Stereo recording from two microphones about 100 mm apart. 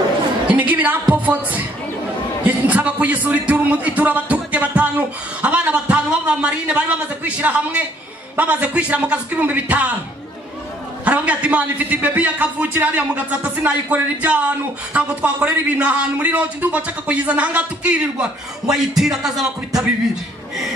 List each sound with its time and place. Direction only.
0.5 s a woman's voice: 15° right (ahead or behind)
11.1 s a man's voice: 15° right (ahead or behind)